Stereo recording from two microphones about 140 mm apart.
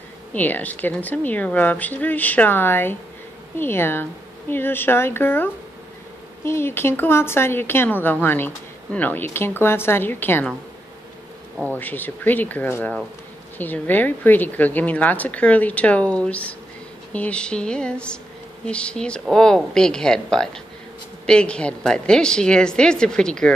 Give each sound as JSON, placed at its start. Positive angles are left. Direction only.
{"t": 0.3, "sound": "a woman's voice", "side_deg": 10}
{"t": 11.7, "sound": "a woman's voice", "side_deg": 15}